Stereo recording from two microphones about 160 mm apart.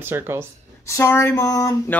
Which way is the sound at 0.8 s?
20° left (ahead or behind).